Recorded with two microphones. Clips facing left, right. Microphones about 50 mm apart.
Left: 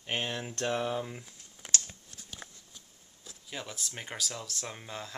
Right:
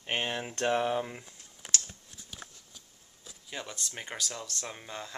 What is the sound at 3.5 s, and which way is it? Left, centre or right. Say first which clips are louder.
Speech: right 1 dB; centre.